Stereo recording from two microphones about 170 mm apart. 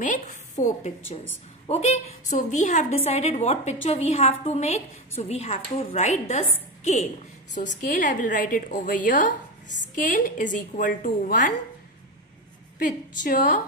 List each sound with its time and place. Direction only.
0.0 s a woman's voice: 45° left (ahead or behind)
7.8 s a woman's voice: 55° left (ahead or behind)
12.7 s a woman's voice: 55° left (ahead or behind)